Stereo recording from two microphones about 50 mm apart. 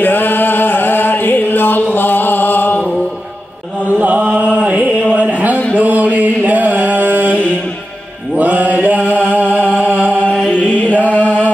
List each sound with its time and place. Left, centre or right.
0.0 s music: left
4.0 s chant: right
5.1 s mantra: right
5.8 s chant: right
8.4 s mantra: right
10.5 s mantra: left
11.1 s chant: left